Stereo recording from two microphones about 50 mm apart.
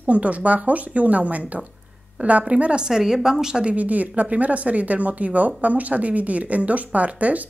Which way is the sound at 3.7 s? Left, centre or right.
Right.